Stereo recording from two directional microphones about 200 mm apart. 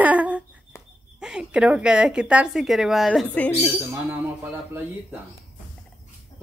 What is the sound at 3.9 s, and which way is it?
Speech, 10° right (ahead or behind).